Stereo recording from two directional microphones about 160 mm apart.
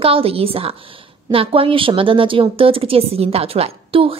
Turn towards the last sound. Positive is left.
turn(degrees=-35)  # may be behind; listen again after turning